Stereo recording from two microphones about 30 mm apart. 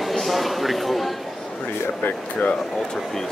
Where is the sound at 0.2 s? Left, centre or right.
Centre.